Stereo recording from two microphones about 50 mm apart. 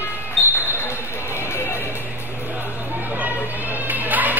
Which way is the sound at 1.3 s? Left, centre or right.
Left.